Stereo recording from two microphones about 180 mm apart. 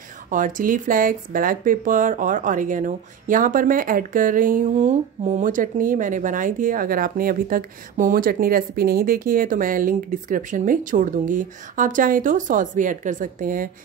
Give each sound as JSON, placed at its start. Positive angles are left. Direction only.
{"t": 0.3, "sound": "speech", "side_deg": -50}